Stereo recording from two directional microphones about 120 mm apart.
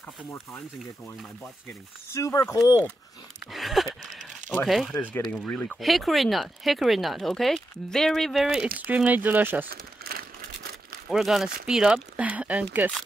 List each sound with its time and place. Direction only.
2.1 s speech: 25° left (ahead or behind)
3.5 s speech: centre (ahead or behind)
4.0 s a sound: 90° right
4.6 s speech: centre (ahead or behind)
4.9 s speech: 20° left (ahead or behind)
5.8 s speech: centre (ahead or behind)
8.7 s speech: 10° right (ahead or behind)
11.1 s speech: centre (ahead or behind)